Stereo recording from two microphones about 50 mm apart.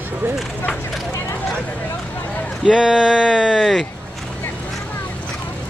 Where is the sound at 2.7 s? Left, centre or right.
Centre.